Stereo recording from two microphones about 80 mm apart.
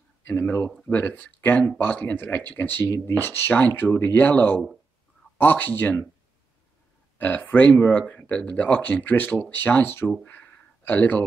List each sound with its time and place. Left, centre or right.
0.3 s speech: left
2.8 s speech: left
7.2 s speech: left
10.2 s a sound: left